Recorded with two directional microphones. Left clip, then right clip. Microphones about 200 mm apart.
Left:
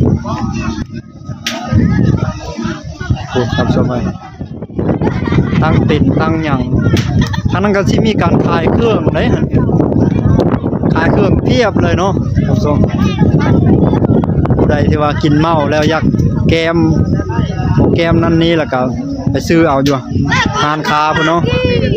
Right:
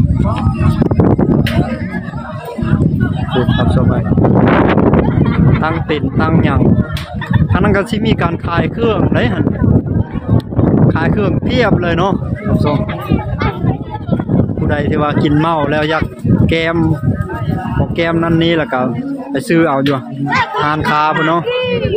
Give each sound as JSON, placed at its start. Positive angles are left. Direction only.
{"t": 5.6, "sound": "speech", "side_deg": 15}
{"t": 7.5, "sound": "speech", "side_deg": 15}
{"t": 10.9, "sound": "speech", "side_deg": 15}
{"t": 14.7, "sound": "speech", "side_deg": 15}
{"t": 17.9, "sound": "speech", "side_deg": 15}